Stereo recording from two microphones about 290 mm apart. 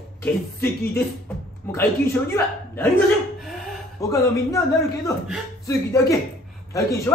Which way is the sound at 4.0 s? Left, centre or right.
Centre.